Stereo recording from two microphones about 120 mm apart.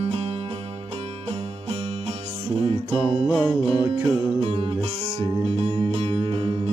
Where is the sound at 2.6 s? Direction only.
55° right (ahead or behind).